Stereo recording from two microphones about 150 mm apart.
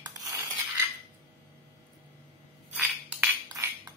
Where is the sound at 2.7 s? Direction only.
5° right (ahead or behind).